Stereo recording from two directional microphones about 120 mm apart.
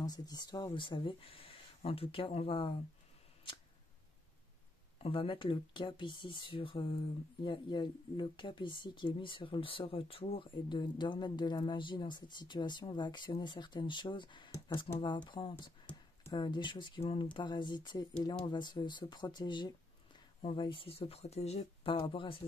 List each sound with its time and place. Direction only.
0.0 s speech: 35° left (ahead or behind); by 2.7 s 50° left (ahead or behind)
4.9 s speech: 50° left (ahead or behind)
21.9 s speech: 45° left (ahead or behind)